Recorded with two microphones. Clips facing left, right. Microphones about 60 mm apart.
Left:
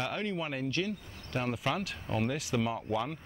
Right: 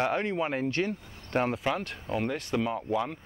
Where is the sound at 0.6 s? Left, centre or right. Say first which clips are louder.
Right 4 dB; right.